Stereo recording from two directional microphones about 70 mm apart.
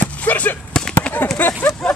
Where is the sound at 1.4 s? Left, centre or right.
Left.